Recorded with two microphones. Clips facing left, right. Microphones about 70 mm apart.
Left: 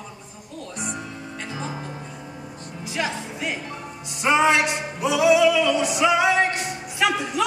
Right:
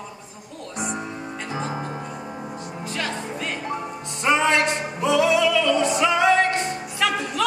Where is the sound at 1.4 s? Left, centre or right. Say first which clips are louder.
Right 4 dB; right.